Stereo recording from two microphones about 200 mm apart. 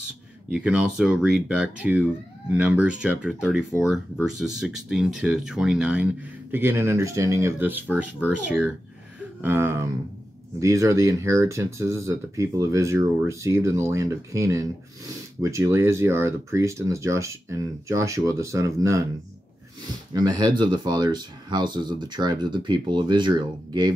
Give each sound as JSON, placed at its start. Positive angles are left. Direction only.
{"t": 0.5, "sound": "speech", "side_deg": -5}
{"t": 20.1, "sound": "speech", "side_deg": -20}